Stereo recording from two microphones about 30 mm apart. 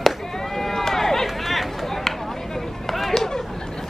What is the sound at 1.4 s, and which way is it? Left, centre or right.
Run, centre.